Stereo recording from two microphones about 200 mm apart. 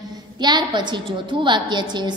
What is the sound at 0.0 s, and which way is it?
A woman's voice, 20° right (ahead or behind).